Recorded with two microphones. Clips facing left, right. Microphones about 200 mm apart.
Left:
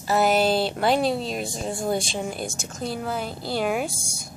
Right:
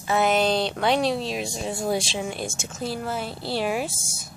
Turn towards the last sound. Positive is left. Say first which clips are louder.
# left 1 dB
turn(degrees=0)  # may be behind; listen again after turning